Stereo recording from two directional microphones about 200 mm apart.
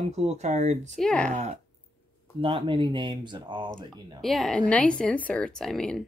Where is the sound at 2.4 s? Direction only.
25° right (ahead or behind).